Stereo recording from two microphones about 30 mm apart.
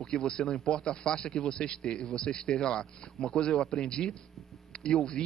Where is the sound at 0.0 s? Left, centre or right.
Left.